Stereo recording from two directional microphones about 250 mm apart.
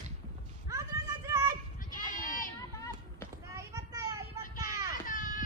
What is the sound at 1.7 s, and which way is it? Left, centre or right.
Goat, left.